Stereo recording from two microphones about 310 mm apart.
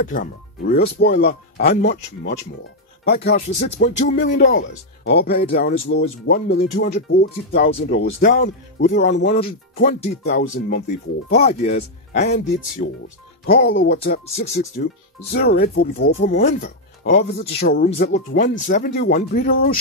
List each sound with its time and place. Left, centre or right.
0.0 s speech: left